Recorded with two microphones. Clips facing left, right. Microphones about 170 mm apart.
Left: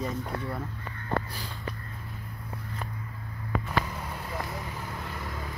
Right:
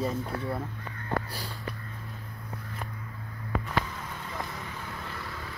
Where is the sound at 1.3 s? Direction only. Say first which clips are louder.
Right 1 dB; 35° right (ahead or behind).